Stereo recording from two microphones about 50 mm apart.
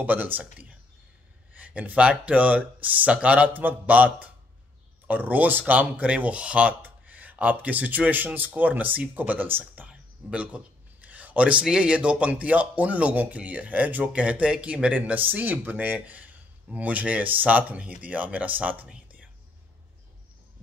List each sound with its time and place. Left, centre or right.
0.0 s speech: right
1.5 s speech: right
9.8 s a sound: right
11.6 s speech: centre; by 18.9 s right